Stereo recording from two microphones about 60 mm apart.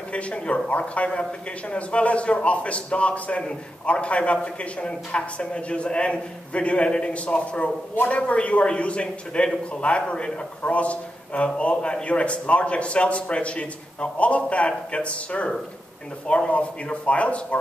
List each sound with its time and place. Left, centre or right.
0.1 s a man's voice: centre